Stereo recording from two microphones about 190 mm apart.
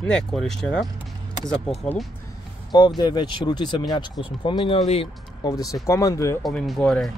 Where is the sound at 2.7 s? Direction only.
20° left (ahead or behind).